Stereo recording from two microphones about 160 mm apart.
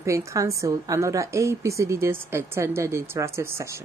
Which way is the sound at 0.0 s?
15° right (ahead or behind).